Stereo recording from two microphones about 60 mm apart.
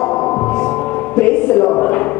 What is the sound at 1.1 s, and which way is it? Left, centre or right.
Music, centre.